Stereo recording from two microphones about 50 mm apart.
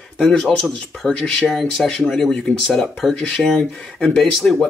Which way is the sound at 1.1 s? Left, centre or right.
Centre.